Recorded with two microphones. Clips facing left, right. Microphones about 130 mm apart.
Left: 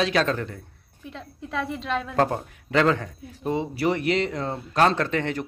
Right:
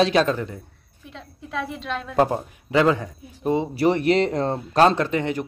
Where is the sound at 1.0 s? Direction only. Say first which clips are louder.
Left 2 dB; centre (ahead or behind).